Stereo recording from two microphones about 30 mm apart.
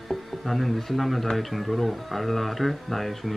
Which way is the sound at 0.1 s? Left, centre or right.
Centre.